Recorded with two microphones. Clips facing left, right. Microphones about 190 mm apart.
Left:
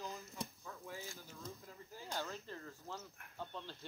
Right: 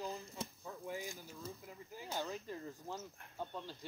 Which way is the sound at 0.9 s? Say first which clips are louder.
Right 6 dB; 15° right (ahead or behind).